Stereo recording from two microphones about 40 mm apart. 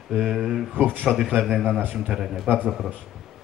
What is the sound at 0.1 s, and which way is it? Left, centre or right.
Speech, centre.